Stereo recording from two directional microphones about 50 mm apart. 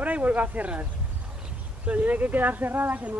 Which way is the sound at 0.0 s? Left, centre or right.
Right.